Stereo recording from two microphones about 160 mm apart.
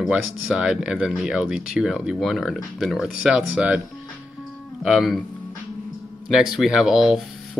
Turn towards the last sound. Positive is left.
turn(degrees=-5)  # may be behind; listen again after turning